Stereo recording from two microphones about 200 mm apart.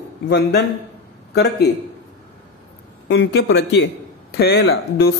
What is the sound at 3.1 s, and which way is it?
A man's voice, 60° left (ahead or behind).